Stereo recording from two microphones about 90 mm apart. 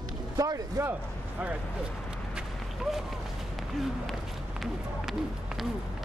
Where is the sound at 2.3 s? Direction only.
5° right (ahead or behind).